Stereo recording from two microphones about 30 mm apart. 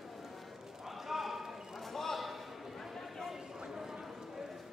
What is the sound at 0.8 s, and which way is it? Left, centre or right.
Basketball bounce, centre.